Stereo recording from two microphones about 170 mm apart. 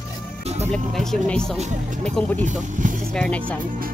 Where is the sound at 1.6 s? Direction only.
45° right (ahead or behind).